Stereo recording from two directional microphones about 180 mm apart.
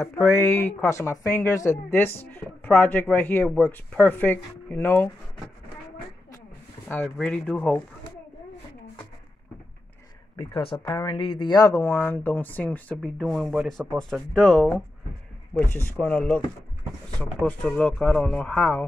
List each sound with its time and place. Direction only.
0.0 s speech: 15° left (ahead or behind)
6.9 s speech: 10° left (ahead or behind)
10.3 s speech: 25° left (ahead or behind); by 18.9 s 5° left (ahead or behind)